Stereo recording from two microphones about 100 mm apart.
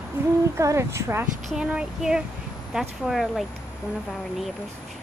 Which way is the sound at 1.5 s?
10° right (ahead or behind).